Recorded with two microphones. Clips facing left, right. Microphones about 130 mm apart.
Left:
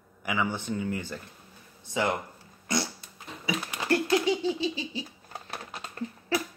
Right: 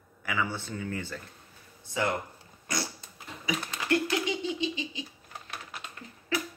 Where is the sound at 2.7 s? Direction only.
25° left (ahead or behind).